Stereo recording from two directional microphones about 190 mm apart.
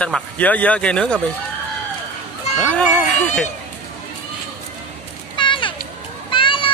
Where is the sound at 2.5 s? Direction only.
5° left (ahead or behind).